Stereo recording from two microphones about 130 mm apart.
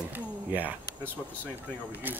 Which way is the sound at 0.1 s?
15° right (ahead or behind).